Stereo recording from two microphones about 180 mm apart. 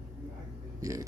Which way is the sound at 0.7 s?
20° right (ahead or behind).